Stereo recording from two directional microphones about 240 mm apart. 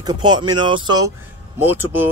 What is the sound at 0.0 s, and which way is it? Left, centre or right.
Speech, centre.